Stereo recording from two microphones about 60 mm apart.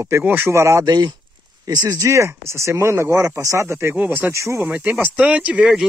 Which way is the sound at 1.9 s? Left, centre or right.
Right.